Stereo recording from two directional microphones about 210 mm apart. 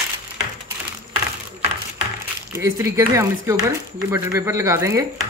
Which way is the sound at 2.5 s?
15° right (ahead or behind).